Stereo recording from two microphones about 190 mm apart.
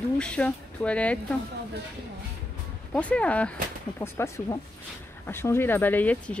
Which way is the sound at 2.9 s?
5° left (ahead or behind).